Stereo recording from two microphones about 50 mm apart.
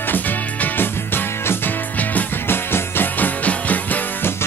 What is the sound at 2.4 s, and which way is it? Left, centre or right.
Music, left.